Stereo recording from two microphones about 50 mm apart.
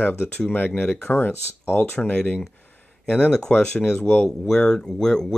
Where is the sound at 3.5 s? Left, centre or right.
Left.